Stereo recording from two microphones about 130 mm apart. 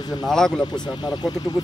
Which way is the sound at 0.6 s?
35° left (ahead or behind).